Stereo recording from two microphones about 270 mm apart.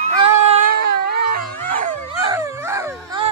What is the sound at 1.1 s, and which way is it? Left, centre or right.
Dog, right.